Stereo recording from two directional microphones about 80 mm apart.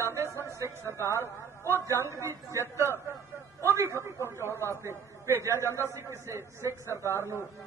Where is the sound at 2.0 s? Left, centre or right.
Right.